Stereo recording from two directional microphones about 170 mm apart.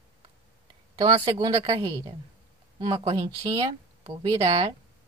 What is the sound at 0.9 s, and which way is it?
A woman's voice, 25° right (ahead or behind).